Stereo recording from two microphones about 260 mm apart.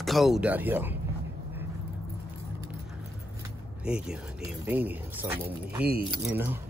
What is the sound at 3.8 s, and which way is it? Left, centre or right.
Speech, centre.